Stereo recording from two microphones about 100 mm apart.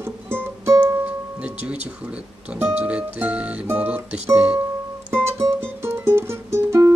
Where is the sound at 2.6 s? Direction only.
15° right (ahead or behind).